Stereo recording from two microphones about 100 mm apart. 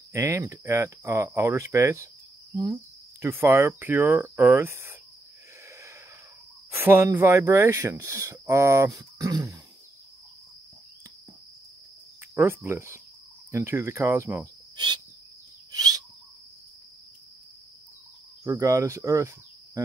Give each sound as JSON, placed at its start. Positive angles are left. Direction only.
{"t": 0.1, "sound": "speech", "side_deg": -30}
{"t": 6.7, "sound": "speech", "side_deg": -25}
{"t": 8.9, "sound": "speech", "side_deg": -40}
{"t": 12.4, "sound": "speech", "side_deg": -25}
{"t": 15.7, "sound": "a sound", "side_deg": -40}
{"t": 18.4, "sound": "speech", "side_deg": -35}